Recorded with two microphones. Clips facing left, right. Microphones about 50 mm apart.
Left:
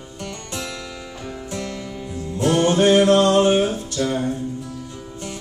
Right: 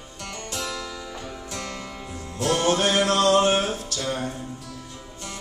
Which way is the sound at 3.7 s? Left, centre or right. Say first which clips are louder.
Left 7 dB; left.